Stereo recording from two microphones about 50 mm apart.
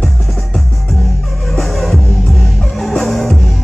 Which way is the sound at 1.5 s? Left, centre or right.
Centre.